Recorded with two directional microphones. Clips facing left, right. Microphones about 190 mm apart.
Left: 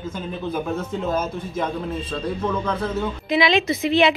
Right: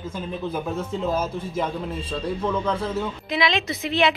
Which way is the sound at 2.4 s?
10° right (ahead or behind).